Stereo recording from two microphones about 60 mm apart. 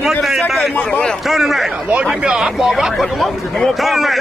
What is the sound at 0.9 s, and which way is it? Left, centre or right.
Speech, centre.